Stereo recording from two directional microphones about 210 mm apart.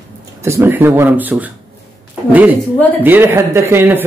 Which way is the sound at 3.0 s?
10° right (ahead or behind).